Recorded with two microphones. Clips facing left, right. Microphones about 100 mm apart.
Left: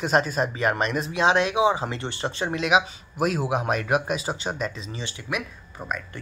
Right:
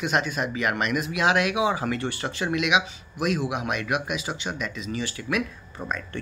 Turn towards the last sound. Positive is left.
turn(degrees=5)  # may be behind; listen again after turning